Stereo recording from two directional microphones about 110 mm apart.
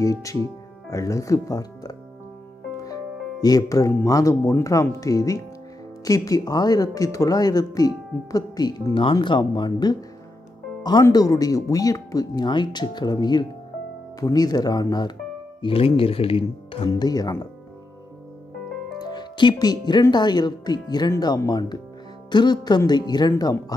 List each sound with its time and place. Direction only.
0.0 s speech: 30° left (ahead or behind)
2.8 s music: 35° left (ahead or behind)
4.0 s speech: 30° left (ahead or behind)
4.4 s speech: 20° left (ahead or behind)
4.6 s speech: 30° left (ahead or behind)
15.6 s speech: 55° left (ahead or behind)
17.0 s speech: 35° left (ahead or behind)
18.9 s speech: 40° left (ahead or behind)